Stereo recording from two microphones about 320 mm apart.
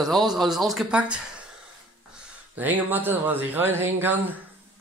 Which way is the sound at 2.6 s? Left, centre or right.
Centre.